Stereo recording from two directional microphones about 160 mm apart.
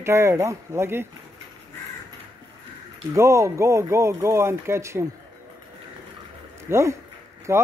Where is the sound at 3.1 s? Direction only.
15° right (ahead or behind).